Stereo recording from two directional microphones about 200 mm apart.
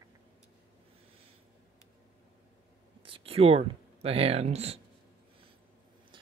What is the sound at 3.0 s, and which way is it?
Speech, 25° right (ahead or behind).